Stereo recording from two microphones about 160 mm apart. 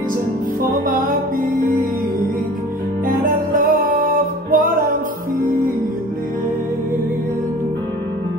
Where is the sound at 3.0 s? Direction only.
60° right (ahead or behind).